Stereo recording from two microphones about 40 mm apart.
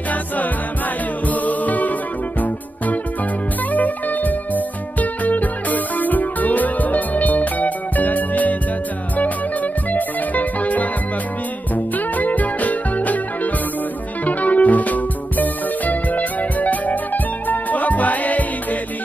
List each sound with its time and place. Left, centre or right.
1.2 s music: left
3.7 s music: left